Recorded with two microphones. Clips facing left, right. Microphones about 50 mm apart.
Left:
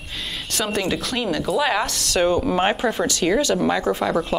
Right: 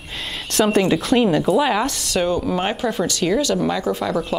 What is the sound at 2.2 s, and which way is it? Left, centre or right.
Speech, centre.